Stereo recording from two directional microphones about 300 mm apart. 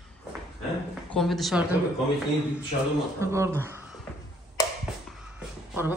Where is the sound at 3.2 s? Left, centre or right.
Centre.